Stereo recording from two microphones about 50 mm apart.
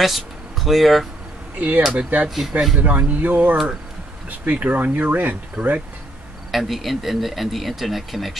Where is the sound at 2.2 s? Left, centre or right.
Centre.